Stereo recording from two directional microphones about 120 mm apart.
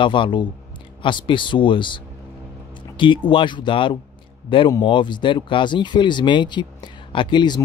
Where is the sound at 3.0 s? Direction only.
45° left (ahead or behind).